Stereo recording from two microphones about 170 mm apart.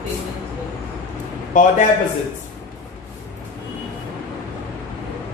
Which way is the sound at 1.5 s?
50° left (ahead or behind).